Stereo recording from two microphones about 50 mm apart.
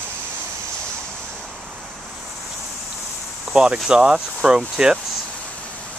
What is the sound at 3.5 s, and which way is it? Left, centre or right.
Speech, centre.